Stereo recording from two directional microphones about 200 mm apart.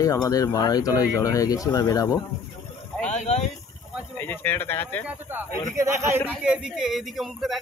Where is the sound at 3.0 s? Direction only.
35° left (ahead or behind).